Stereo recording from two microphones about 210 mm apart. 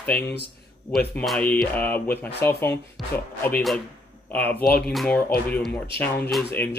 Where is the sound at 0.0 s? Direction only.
5° left (ahead or behind).